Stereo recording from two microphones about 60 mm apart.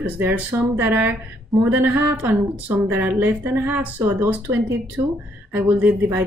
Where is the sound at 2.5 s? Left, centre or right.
Right.